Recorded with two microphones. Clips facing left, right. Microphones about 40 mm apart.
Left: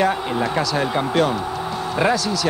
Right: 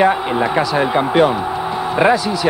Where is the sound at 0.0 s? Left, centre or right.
Right.